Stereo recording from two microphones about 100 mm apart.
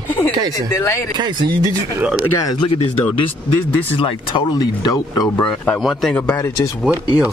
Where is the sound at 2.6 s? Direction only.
65° left (ahead or behind).